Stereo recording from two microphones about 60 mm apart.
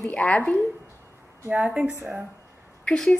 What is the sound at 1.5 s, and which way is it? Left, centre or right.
Speech, right.